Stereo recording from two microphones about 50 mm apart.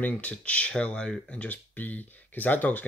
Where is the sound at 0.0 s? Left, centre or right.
Left.